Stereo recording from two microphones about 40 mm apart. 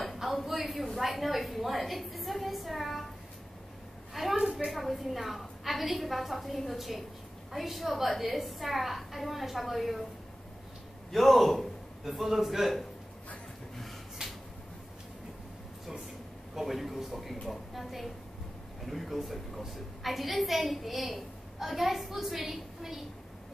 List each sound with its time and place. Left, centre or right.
0.0 s a sound: centre
4.1 s a sound: centre
4.6 s a woman's voice: centre
11.1 s a man's voice: centre
14.2 s finger snapping: centre
16.5 s a woman's voice: centre